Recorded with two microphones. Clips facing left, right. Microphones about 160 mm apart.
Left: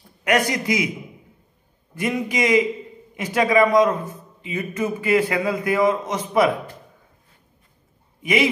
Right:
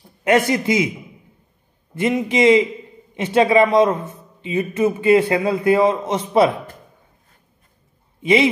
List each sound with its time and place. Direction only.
0.2 s a man's voice: 25° right (ahead or behind)
2.0 s a man's voice: 25° right (ahead or behind)
8.2 s a man's voice: 30° right (ahead or behind)